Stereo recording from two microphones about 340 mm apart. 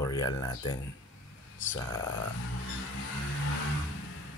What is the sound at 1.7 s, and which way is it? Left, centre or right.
Speech, centre.